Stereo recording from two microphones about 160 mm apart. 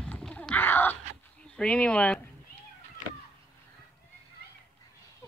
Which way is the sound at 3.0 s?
50° left (ahead or behind).